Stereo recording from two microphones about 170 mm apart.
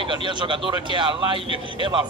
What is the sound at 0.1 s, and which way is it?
Speech, 30° right (ahead or behind).